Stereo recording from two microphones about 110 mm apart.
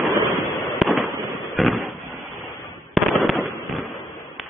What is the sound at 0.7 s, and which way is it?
Fireworks, centre (ahead or behind).